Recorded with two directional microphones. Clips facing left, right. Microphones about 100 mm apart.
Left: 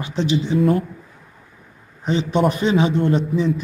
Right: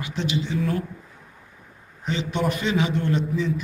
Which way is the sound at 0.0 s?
30° left (ahead or behind).